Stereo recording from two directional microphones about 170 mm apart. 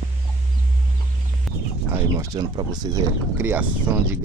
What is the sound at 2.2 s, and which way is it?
Speech, 25° right (ahead or behind).